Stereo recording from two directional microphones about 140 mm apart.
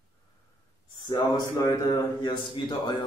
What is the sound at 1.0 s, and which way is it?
A man's voice, 30° left (ahead or behind).